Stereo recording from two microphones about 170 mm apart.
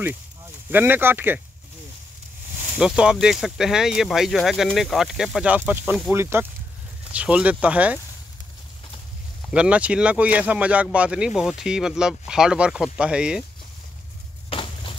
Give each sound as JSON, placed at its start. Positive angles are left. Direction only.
{"t": 0.7, "sound": "speech", "side_deg": -10}
{"t": 2.8, "sound": "speech", "side_deg": -5}
{"t": 9.5, "sound": "speech", "side_deg": -5}
{"t": 14.5, "sound": "a sound", "side_deg": 30}